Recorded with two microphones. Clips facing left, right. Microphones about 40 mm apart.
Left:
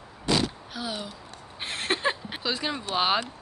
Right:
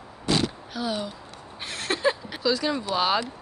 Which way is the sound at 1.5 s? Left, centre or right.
Left.